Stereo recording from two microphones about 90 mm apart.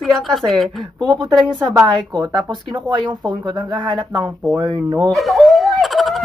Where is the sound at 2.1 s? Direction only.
50° right (ahead or behind).